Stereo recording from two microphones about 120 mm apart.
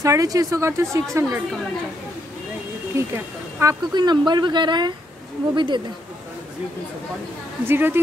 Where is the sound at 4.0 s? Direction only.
35° right (ahead or behind).